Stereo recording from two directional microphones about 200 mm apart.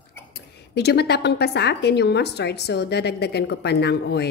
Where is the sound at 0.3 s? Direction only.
55° left (ahead or behind).